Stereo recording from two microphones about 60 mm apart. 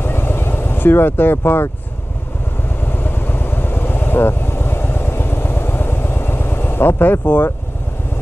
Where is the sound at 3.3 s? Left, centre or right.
Left.